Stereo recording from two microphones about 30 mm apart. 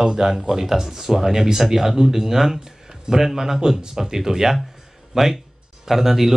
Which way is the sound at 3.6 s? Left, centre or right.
Right.